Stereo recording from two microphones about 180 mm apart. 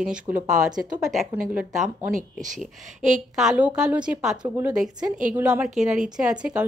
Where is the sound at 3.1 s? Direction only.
5° right (ahead or behind).